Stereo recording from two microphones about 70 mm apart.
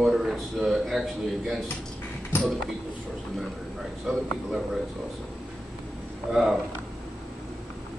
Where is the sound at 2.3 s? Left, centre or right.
Left.